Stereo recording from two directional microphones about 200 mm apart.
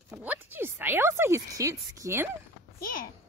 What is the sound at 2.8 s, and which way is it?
Speech, 45° left (ahead or behind).